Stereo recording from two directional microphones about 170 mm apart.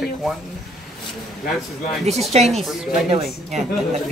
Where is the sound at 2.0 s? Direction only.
40° right (ahead or behind).